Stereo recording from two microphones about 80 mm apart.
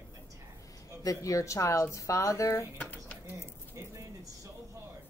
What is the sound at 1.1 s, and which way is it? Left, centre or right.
Speech, left.